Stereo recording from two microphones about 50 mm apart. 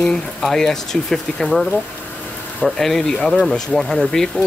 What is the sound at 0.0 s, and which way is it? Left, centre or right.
Speech, centre.